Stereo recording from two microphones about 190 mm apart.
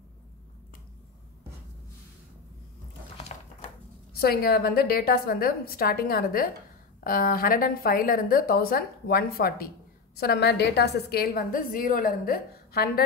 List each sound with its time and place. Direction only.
4.2 s a woman's voice: 55° left (ahead or behind)